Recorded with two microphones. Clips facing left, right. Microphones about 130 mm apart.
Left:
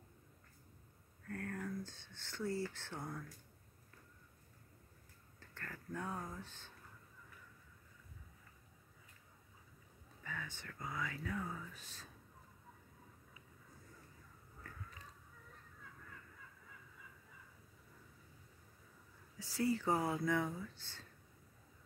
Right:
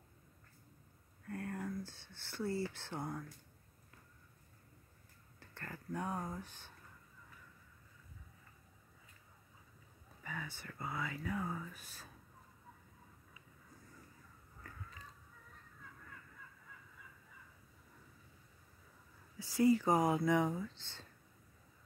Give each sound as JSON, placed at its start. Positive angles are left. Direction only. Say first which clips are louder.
{"t": 1.2, "sound": "a sound", "louder": "right 2 dB", "side_deg": -10}
{"t": 5.4, "sound": "speech", "louder": "right 2 dB", "side_deg": -15}
{"t": 10.2, "sound": "speech", "louder": "right 2 dB", "side_deg": -10}
{"t": 19.3, "sound": "speech", "louder": "right 7 dB", "side_deg": -15}